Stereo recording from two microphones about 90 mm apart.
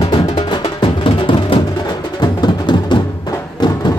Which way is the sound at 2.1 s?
55° left (ahead or behind).